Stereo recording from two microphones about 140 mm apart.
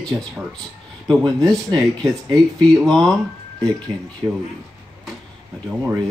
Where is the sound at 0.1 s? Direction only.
5° right (ahead or behind).